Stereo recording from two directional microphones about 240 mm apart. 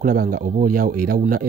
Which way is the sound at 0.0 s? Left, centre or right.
Right.